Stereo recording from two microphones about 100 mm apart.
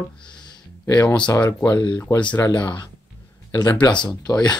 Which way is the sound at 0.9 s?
35° left (ahead or behind).